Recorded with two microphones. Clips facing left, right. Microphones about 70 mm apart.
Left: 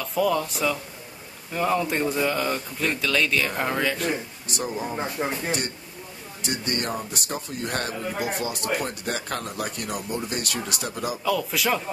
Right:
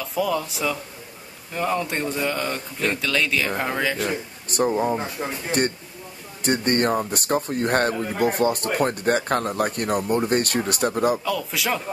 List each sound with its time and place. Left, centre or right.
0.0 s speech: centre
4.5 s speech: right
5.2 s speech: centre
6.4 s speech: right
11.2 s speech: centre